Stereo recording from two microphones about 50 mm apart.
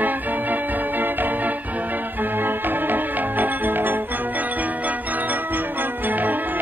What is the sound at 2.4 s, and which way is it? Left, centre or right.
Music, right.